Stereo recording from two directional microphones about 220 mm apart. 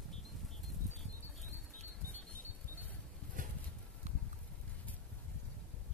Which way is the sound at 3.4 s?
35° right (ahead or behind).